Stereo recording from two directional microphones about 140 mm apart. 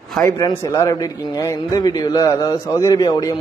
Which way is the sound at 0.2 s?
25° left (ahead or behind).